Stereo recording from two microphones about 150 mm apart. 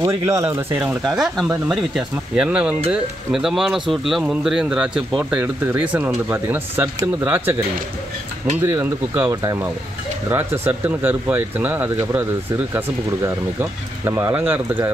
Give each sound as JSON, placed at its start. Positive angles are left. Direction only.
{"t": 0.0, "sound": "speech", "side_deg": -20}
{"t": 1.0, "sound": "speech", "side_deg": 0}
{"t": 8.6, "sound": "speech", "side_deg": -15}